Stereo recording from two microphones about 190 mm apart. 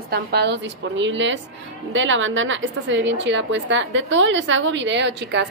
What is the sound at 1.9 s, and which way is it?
A woman's voice, 90° right.